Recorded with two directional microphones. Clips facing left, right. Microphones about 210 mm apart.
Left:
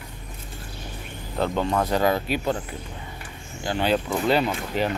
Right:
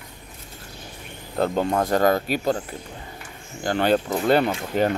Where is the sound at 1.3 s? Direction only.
40° right (ahead or behind).